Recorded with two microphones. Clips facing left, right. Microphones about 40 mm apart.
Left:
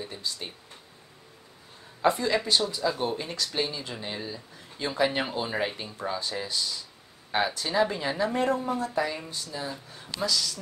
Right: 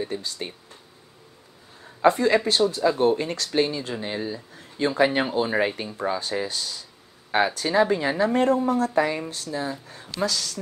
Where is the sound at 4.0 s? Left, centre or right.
Centre.